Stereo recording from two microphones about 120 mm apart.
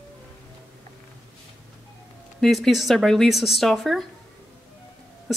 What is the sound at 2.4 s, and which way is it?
Speech, centre (ahead or behind).